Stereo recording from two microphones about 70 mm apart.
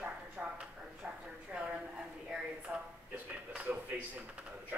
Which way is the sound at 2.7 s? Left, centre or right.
Centre.